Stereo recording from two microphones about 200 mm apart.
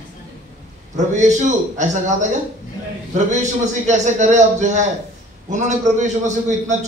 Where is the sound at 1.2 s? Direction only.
35° right (ahead or behind).